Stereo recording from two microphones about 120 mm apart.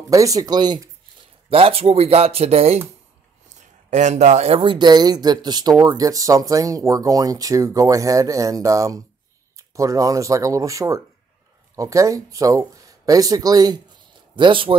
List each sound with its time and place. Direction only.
0.1 s speech: 30° right (ahead or behind)
1.5 s speech: 55° right (ahead or behind)
3.5 s speech: 85° right; by 13.8 s 35° right (ahead or behind)
14.3 s speech: 45° right (ahead or behind)